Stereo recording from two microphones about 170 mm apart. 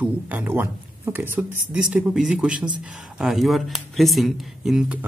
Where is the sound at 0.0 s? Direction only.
10° right (ahead or behind).